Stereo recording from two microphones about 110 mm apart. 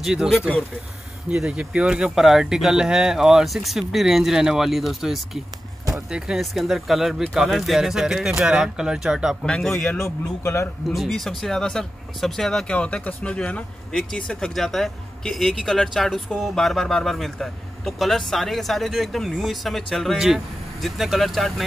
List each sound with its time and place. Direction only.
0.0 s speech: 5° right (ahead or behind)
9.4 s speech: 5° left (ahead or behind)
10.4 s speech: 25° left (ahead or behind)
11.0 s speech: centre (ahead or behind)